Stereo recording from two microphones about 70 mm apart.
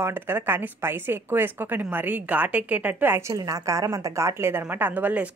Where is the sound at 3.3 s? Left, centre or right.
Right.